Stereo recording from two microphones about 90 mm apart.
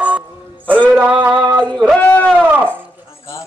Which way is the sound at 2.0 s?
20° left (ahead or behind).